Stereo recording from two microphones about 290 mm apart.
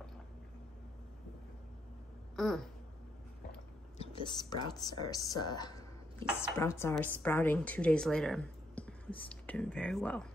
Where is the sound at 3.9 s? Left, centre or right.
Centre.